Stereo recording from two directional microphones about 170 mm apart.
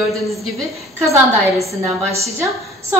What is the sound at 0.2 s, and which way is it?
Speech, centre (ahead or behind).